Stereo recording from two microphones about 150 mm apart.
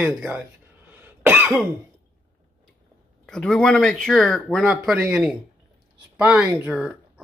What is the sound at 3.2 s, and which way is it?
Speech, 5° left (ahead or behind).